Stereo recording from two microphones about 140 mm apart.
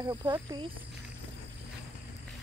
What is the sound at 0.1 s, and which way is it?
Speech, 25° right (ahead or behind).